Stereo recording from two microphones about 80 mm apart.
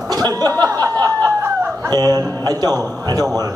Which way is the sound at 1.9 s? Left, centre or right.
Right.